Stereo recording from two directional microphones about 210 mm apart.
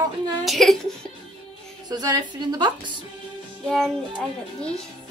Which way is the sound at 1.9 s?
20° right (ahead or behind).